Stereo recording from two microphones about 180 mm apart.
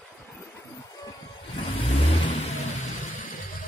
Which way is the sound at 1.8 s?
35° left (ahead or behind).